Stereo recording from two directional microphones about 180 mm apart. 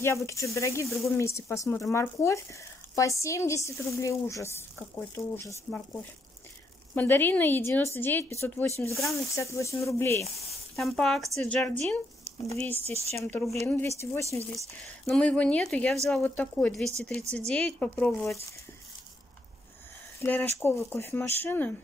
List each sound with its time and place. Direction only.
0.0 s a woman's voice: 15° left (ahead or behind)
7.0 s a woman's voice: 10° left (ahead or behind)
10.8 s a woman's voice: centre (ahead or behind)
12.3 s a sound: 35° left (ahead or behind)
12.9 s speech: 35° right (ahead or behind)
13.2 s a woman's voice: 10° left (ahead or behind)
20.2 s a woman's voice: 10° left (ahead or behind)